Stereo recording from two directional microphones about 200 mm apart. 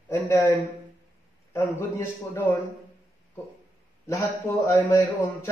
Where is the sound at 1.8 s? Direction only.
10° left (ahead or behind).